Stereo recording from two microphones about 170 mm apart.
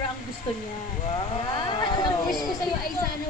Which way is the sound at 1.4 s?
25° left (ahead or behind).